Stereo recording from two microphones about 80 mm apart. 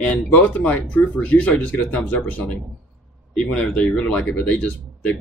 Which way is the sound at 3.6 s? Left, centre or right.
Centre.